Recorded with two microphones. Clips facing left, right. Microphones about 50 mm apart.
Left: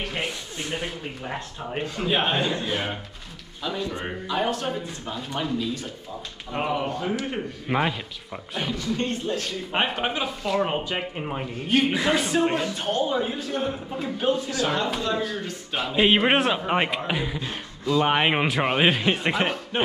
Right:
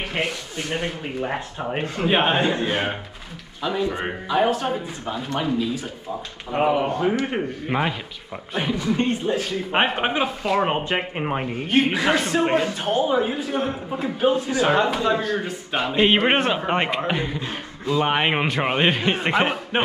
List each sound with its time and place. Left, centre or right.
1.0 s a man's voice: right
3.6 s a man's voice: centre
6.5 s a man's voice: centre
7.6 s a man's voice: centre
8.5 s a man's voice: centre
9.7 s a man's voice: right
11.7 s a man's voice: centre
12.2 s a man's voice: centre
12.4 s a man's voice: right
14.3 s a man's voice: right
15.4 s a man's voice: centre
17.4 s a man's voice: centre
19.7 s a man's voice: right